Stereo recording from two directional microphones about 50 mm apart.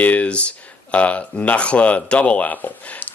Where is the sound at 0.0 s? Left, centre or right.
Left.